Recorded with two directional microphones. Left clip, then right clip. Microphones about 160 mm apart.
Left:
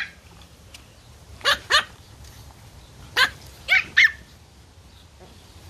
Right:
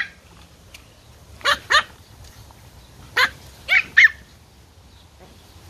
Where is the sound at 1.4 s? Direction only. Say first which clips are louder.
Right 2 dB; 55° left (ahead or behind).